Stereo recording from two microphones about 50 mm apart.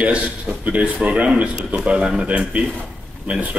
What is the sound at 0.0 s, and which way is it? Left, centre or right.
Speech, right.